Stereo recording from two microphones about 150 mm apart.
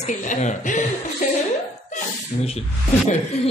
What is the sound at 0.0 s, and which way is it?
Speech, 55° left (ahead or behind).